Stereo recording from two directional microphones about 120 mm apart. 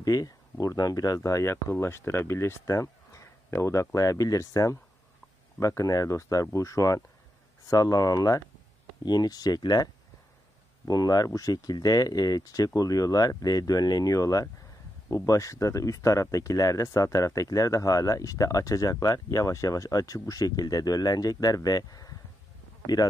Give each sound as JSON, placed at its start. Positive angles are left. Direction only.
{"t": 0.0, "sound": "speech", "side_deg": 30}
{"t": 10.9, "sound": "speech", "side_deg": 30}